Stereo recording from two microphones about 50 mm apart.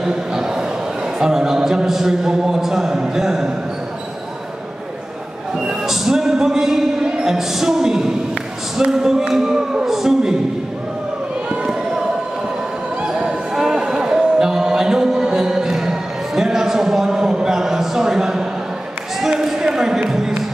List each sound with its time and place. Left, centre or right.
0.0 s a sound: centre
1.2 s speech: centre
5.6 s speech: centre
7.0 s music: centre
7.3 s speech: centre
13.0 s music: centre
19.4 s a sound: centre